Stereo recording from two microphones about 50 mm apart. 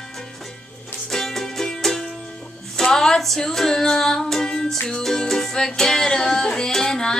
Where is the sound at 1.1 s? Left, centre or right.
Centre.